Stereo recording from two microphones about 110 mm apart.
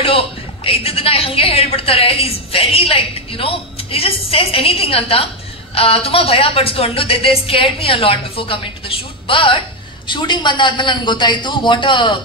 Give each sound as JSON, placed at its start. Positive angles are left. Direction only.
{"t": 0.7, "sound": "a woman's voice", "side_deg": 60}